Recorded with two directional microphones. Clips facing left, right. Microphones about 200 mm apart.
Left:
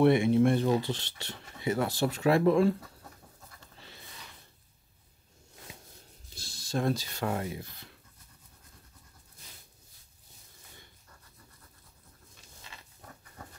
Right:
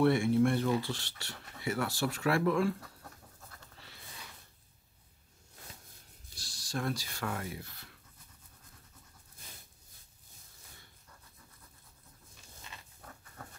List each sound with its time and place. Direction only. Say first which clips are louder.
0.0 s speech: left 4 dB; 20° left (ahead or behind)
6.3 s a sound: left 6 dB; 25° left (ahead or behind)
7.2 s speech: left 5 dB; 25° left (ahead or behind)